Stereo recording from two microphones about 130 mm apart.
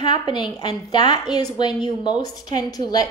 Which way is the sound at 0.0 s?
35° left (ahead or behind).